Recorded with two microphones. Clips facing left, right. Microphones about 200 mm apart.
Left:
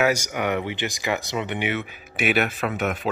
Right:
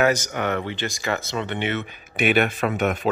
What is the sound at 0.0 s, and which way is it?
Speech, 10° left (ahead or behind).